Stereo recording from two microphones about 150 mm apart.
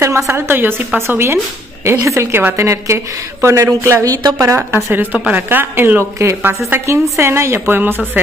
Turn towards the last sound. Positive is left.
turn(degrees=-15)  # may be behind; listen again after turning